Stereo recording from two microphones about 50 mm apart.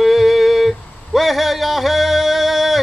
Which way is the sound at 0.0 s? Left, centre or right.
Centre.